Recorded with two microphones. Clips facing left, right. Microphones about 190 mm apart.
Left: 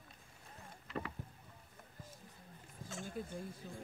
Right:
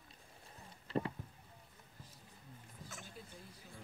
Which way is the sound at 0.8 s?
30° right (ahead or behind).